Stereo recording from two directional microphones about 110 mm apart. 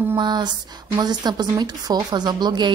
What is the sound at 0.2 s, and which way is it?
A woman's voice, 40° right (ahead or behind).